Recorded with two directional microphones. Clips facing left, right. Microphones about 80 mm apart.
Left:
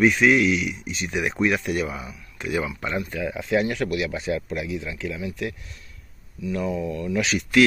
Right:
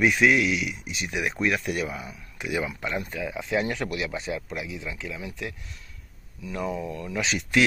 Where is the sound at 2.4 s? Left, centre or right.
Centre.